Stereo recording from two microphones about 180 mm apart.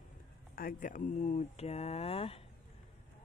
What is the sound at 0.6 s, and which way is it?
Speech, 50° left (ahead or behind).